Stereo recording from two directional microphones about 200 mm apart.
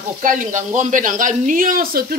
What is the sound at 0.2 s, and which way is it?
Speech, 40° right (ahead or behind).